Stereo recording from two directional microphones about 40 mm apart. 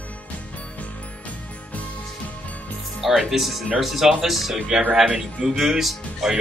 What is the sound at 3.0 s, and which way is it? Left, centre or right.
Speech, centre.